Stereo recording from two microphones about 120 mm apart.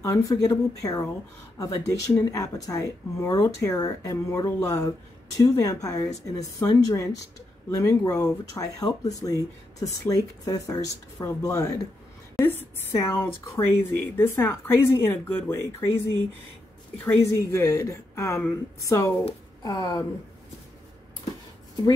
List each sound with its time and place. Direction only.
0.0 s a woman's voice: 30° left (ahead or behind)
17.0 s a woman's voice: 20° left (ahead or behind)